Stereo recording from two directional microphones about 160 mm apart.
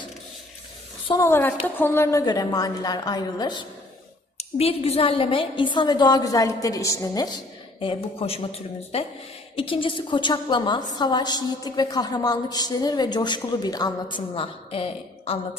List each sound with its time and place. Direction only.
1.2 s a woman's voice: 15° left (ahead or behind)
4.4 s a woman's voice: 40° left (ahead or behind); by 7.3 s 20° left (ahead or behind)
7.8 s a woman's voice: 35° left (ahead or behind)